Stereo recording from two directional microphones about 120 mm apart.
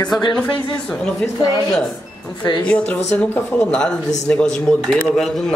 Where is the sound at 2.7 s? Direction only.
10° left (ahead or behind).